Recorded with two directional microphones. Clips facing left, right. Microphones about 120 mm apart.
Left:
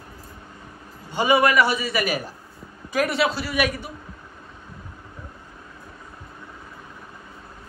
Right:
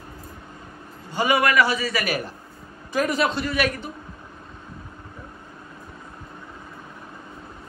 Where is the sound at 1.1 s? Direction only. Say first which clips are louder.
Left 2 dB; 25° left (ahead or behind).